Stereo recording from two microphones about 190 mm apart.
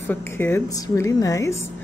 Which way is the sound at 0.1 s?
10° left (ahead or behind).